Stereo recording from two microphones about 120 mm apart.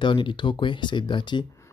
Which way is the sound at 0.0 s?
45° left (ahead or behind).